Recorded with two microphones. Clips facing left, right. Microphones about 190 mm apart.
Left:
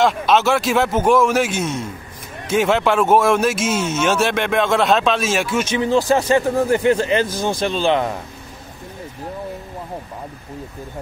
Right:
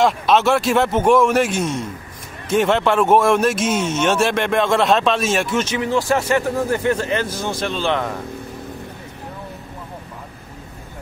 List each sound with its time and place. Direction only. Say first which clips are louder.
0.0 s a man's voice: even; centre (ahead or behind)
5.7 s speech: left 3 dB; 25° left (ahead or behind)